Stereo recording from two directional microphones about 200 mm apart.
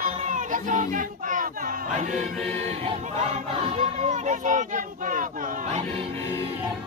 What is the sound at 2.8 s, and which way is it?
Speech, 35° right (ahead or behind).